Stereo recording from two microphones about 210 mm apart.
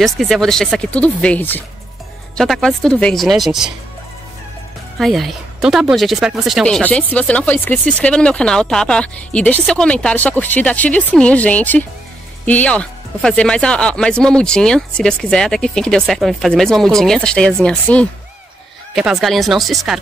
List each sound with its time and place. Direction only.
0.0 s speech: centre (ahead or behind)
4.9 s speech: centre (ahead or behind)